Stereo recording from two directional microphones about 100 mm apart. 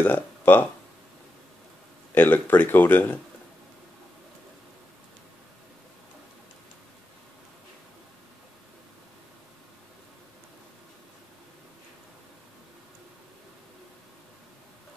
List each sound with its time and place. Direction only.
0.0 s speech: 20° left (ahead or behind)
2.1 s speech: 20° left (ahead or behind)